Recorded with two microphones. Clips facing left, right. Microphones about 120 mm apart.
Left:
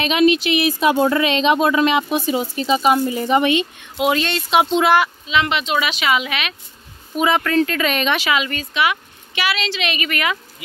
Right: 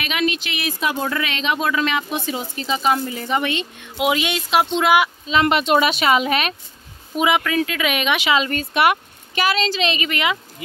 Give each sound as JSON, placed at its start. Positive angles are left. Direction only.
{"t": 0.0, "sound": "speech", "side_deg": 20}
{"t": 4.0, "sound": "speech", "side_deg": -10}
{"t": 4.6, "sound": "speech", "side_deg": 0}
{"t": 5.3, "sound": "a woman's voice", "side_deg": -45}
{"t": 7.2, "sound": "speech", "side_deg": -15}
{"t": 8.4, "sound": "a woman's voice", "side_deg": -45}